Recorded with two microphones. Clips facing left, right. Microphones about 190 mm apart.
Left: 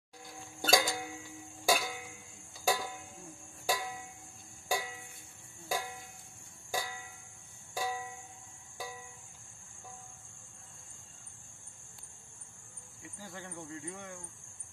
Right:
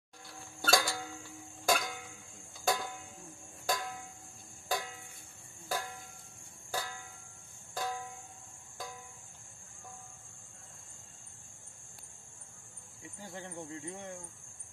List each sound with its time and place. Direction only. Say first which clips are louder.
0.4 s music: left 1 dB; 15° left (ahead or behind)
1.7 s music: left 1 dB; 5° left (ahead or behind)
2.6 s a sound: left 1 dB; 5° left (ahead or behind)
4.6 s music: left 1 dB; 10° left (ahead or behind)
5.7 s a sound: left 1 dB; 10° left (ahead or behind)
7.7 s music: left 1 dB; 10° left (ahead or behind)
13.2 s speech: right 2 dB; 25° right (ahead or behind)